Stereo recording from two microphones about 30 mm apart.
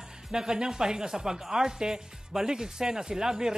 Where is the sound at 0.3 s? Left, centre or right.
Right.